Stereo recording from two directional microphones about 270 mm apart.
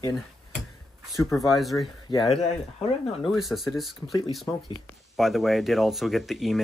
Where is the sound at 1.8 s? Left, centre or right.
Centre.